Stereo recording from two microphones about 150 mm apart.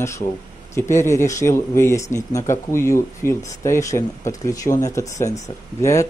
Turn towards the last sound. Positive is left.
turn(degrees=20)  # may be behind; listen again after turning